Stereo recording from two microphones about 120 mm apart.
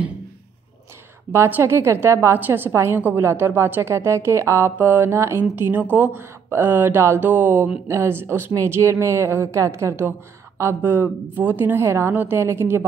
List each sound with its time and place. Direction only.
1.3 s a woman's voice: 20° right (ahead or behind)